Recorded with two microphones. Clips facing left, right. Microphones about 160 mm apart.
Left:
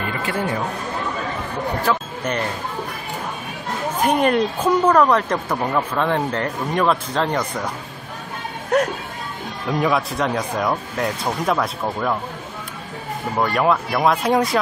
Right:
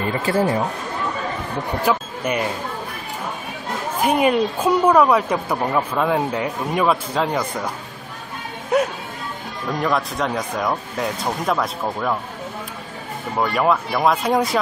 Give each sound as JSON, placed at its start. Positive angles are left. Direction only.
{"t": 0.3, "sound": "speech", "side_deg": -35}
{"t": 1.9, "sound": "speech", "side_deg": -10}
{"t": 4.0, "sound": "speech", "side_deg": -5}
{"t": 8.6, "sound": "music", "side_deg": -5}
{"t": 9.7, "sound": "speech", "side_deg": 5}
{"t": 13.4, "sound": "speech", "side_deg": 0}